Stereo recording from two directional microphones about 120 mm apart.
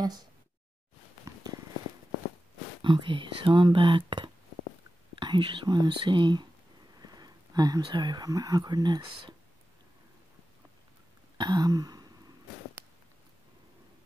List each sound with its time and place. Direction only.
0.0 s speech: 35° right (ahead or behind)
2.8 s speech: 40° right (ahead or behind)
7.0 s a sound: 35° right (ahead or behind)
7.8 s speech: 40° right (ahead or behind)
11.3 s throat clearing: 35° right (ahead or behind)